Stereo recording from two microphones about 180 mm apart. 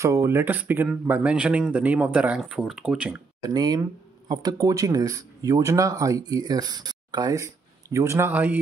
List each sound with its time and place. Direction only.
0.0 s speech: 15° right (ahead or behind)
3.4 s speech: 20° right (ahead or behind)